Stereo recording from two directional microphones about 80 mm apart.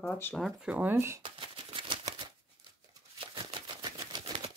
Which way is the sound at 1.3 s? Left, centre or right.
Right.